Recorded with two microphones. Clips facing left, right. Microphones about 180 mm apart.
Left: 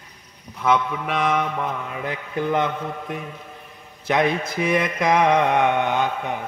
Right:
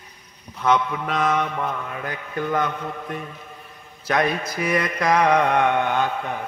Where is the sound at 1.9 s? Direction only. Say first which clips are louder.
Left 2 dB; 20° left (ahead or behind).